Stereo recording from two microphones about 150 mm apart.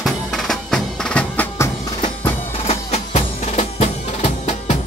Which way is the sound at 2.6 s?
45° left (ahead or behind).